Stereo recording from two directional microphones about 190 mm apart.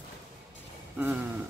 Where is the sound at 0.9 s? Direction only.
10° right (ahead or behind).